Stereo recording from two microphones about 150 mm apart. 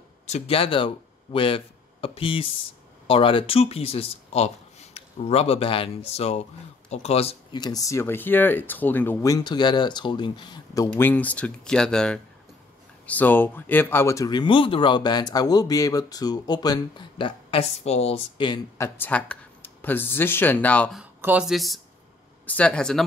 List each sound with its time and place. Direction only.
0.3 s speech: 40° left (ahead or behind)
7.5 s speech: 25° left (ahead or behind)
10.9 s speech: 10° left (ahead or behind); by 18.6 s 35° left (ahead or behind)
18.8 s speech: 10° left (ahead or behind)
21.2 s speech: 10° right (ahead or behind)